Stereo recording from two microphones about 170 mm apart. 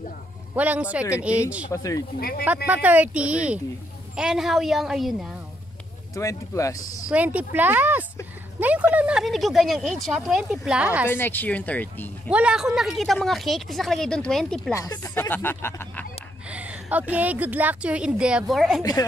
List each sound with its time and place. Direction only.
0.6 s speech: 10° right (ahead or behind)
1.7 s speech: 20° left (ahead or behind)
2.1 s speech: 65° left (ahead or behind)
2.4 s speech: 10° right (ahead or behind)
6.1 s speech: 20° left (ahead or behind)
7.1 s speech: 10° right (ahead or behind)
11.1 s speech: 10° left (ahead or behind)
12.3 s speech: 5° right (ahead or behind)
14.7 s speech: 20° left (ahead or behind)
16.4 s speech: 10° right (ahead or behind)
18.8 s speech: 20° left (ahead or behind)